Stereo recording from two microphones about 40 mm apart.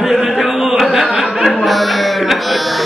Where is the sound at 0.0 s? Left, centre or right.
Centre.